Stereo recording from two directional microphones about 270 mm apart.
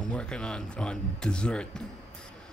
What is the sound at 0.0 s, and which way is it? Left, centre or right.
Speech, centre.